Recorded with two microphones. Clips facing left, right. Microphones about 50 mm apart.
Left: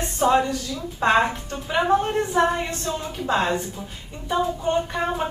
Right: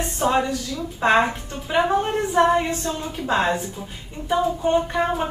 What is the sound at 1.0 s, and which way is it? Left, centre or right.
A woman's voice, centre.